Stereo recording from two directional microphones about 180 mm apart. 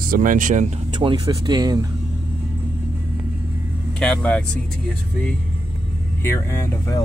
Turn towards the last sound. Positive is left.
turn(degrees=15)  # may be behind; listen again after turning